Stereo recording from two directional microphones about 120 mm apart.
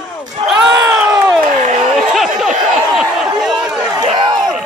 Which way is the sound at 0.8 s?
25° right (ahead or behind).